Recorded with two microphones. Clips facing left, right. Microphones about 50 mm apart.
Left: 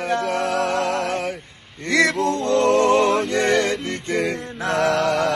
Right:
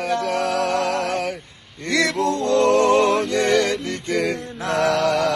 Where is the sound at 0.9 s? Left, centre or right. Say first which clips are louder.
Even; left.